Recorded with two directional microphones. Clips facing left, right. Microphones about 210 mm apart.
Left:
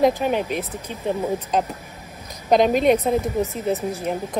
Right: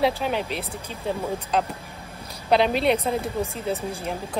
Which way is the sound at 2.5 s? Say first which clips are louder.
Left 4 dB; 15° left (ahead or behind).